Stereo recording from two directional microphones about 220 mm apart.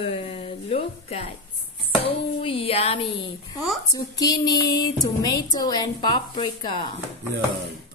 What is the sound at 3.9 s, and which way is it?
A woman's voice, 15° left (ahead or behind).